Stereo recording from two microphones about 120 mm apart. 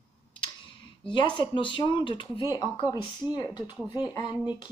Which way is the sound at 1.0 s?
40° left (ahead or behind).